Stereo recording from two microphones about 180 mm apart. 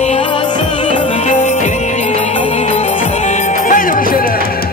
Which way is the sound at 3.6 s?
50° left (ahead or behind).